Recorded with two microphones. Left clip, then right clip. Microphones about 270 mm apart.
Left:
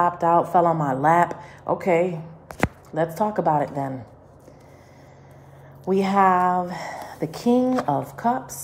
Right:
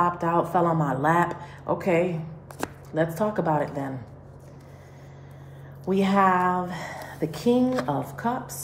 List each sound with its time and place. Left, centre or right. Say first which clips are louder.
0.0 s speech: left 4 dB; left
5.9 s a woman's voice: left 3 dB; left